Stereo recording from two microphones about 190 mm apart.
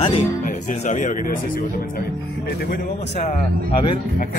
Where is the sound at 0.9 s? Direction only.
40° left (ahead or behind).